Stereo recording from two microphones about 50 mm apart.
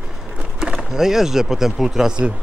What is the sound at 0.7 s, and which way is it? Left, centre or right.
Speech, centre.